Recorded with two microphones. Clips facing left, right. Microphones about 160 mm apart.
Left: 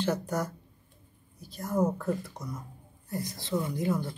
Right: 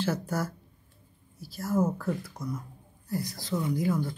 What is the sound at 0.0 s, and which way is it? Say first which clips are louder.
Speech: even; 5° right (ahead or behind).